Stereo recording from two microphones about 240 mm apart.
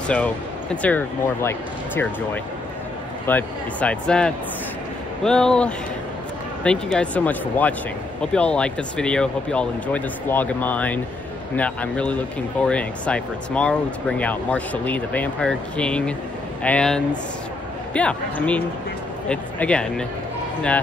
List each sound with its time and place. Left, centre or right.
0.8 s speech: centre